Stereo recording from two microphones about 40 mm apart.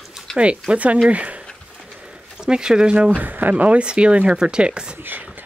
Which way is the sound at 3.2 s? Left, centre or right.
Right.